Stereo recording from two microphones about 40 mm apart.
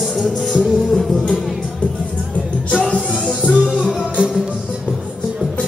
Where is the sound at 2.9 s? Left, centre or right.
Left.